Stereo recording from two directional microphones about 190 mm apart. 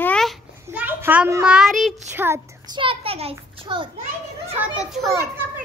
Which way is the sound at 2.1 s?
10° right (ahead or behind).